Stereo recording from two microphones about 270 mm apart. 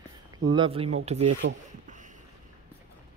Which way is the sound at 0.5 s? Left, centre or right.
Centre.